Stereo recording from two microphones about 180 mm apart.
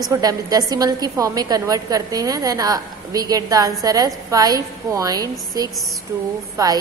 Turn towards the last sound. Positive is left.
turn(degrees=-20)  # may be behind; listen again after turning